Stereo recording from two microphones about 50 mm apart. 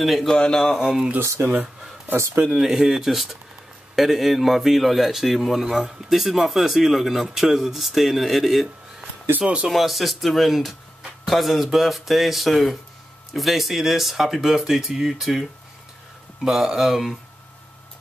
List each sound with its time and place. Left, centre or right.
0.0 s a man's voice: centre
0.3 s a man's voice: centre
0.7 s a man's voice: centre
1.5 s speech: right
2.1 s speech: right
2.5 s a man's voice: centre
9.7 s a man's voice: centre
16.4 s a man's voice: centre